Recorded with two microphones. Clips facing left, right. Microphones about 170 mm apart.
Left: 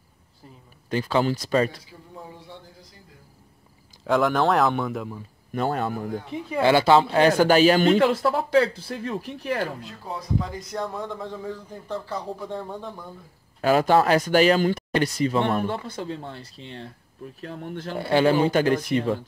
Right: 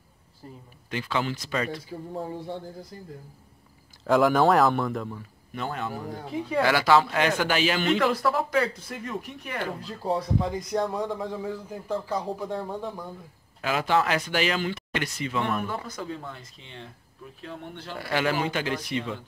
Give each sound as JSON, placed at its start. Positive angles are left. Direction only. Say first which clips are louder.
{"t": 0.8, "sound": "speech", "louder": "left 6 dB", "side_deg": 40}
{"t": 1.9, "sound": "speech", "louder": "right 8 dB", "side_deg": -50}
{"t": 4.0, "sound": "a man's voice", "louder": "right 1 dB", "side_deg": 0}
{"t": 5.5, "sound": "speech", "louder": "left 7 dB", "side_deg": 45}
{"t": 6.6, "sound": "speech", "louder": "left 4 dB", "side_deg": 25}
{"t": 8.1, "sound": "speech", "louder": "left 4 dB", "side_deg": 25}
{"t": 9.8, "sound": "a man's voice", "louder": "right 7 dB", "side_deg": -35}
{"t": 13.6, "sound": "speech", "louder": "left 6 dB", "side_deg": 40}
{"t": 17.9, "sound": "a man's voice", "louder": "left 7 dB", "side_deg": 30}
{"t": 18.5, "sound": "speech", "louder": "left 8 dB", "side_deg": 45}